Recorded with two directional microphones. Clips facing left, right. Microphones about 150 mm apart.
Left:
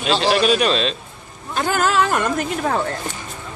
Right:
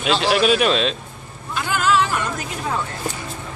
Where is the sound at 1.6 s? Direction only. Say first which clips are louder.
Left 1 dB; 45° left (ahead or behind).